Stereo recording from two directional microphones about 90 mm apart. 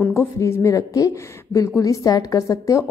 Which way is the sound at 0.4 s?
35° left (ahead or behind).